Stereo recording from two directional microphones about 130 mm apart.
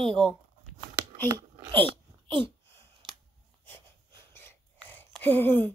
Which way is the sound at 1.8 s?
40° right (ahead or behind).